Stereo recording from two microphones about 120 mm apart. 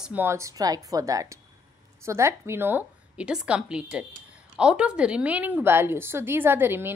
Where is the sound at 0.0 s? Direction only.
15° right (ahead or behind).